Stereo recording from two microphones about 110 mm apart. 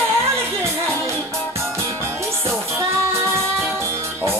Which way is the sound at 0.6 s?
25° right (ahead or behind).